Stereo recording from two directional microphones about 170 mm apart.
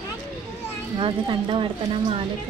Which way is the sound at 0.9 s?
30° right (ahead or behind).